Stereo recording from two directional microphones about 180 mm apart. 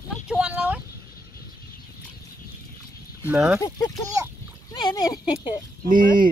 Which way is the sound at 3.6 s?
20° left (ahead or behind).